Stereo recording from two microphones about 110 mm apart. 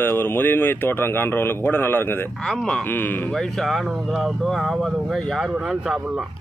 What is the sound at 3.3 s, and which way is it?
Speech, centre (ahead or behind).